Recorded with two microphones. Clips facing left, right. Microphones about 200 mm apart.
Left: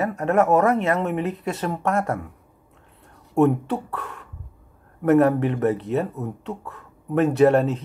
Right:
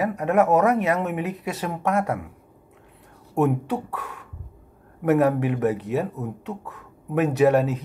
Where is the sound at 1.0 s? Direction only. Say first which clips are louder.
Left 2 dB; 5° right (ahead or behind).